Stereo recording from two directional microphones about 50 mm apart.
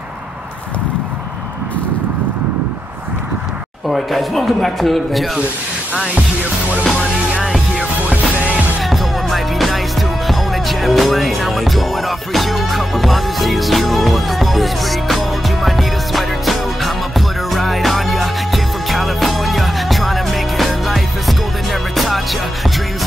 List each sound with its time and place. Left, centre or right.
3.9 s speech: centre
8.1 s music: right
8.9 s music: centre